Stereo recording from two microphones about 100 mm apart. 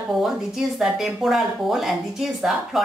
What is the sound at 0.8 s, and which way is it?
A woman's voice, centre (ahead or behind).